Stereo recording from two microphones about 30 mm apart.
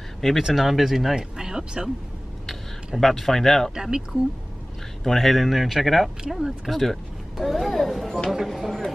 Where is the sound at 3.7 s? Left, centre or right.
Right.